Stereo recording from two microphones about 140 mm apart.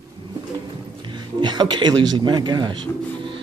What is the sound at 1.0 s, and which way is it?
A man's voice, 35° right (ahead or behind).